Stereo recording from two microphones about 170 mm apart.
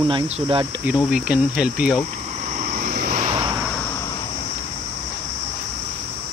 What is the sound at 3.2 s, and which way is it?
Vehicle, 30° right (ahead or behind).